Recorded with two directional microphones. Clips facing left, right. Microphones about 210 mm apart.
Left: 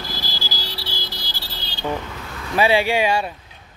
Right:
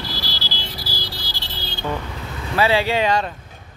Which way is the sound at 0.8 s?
25° left (ahead or behind).